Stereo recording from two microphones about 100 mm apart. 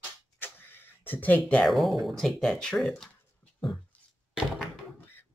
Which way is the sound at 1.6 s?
Centre (ahead or behind).